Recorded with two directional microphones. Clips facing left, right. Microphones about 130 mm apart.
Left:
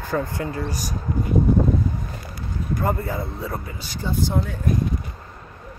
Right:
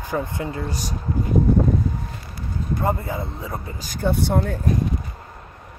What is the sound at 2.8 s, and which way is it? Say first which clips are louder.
Speech: even; 20° right (ahead or behind).